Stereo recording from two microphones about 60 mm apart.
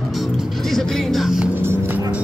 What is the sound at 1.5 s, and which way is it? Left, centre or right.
Music, right.